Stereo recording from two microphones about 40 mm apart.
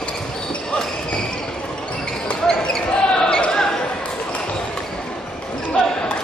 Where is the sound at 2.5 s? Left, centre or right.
Centre.